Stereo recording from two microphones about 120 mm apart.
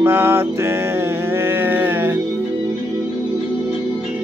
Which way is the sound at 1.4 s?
20° right (ahead or behind).